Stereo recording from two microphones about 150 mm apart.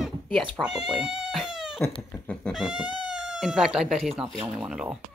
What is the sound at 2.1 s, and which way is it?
Chicken, 10° left (ahead or behind).